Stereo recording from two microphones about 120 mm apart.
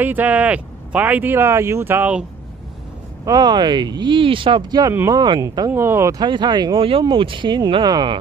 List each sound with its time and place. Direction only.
0.0 s speech: 15° right (ahead or behind)
3.3 s speech: 35° right (ahead or behind)
5.7 s speech: 20° right (ahead or behind)
6.2 s speech: 40° right (ahead or behind)